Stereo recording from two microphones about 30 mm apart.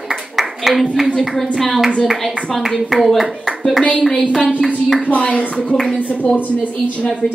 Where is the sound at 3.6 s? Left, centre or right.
Centre.